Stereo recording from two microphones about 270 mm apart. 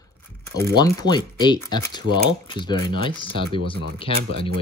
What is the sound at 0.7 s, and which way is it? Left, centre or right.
Speech, centre.